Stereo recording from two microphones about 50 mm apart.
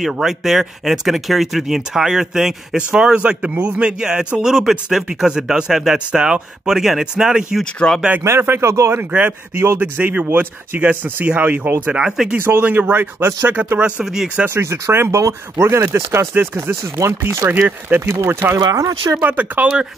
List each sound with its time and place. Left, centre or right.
0.0 s a man's voice: centre; by 3.9 s right
4.0 s speech: centre
8.4 s speech: right
8.9 s a man's voice: right
12.0 s speech: centre
12.4 s speech: right
13.7 s speech: right
14.5 s speech: right
15.0 s speech: right
16.3 s speech: right
17.0 s speech: right
17.5 s speech: right
18.2 s speech: right
19.1 s speech: right